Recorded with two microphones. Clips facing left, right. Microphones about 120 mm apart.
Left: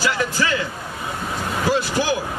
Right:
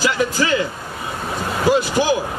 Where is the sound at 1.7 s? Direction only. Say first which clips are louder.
Right 5 dB; 15° right (ahead or behind).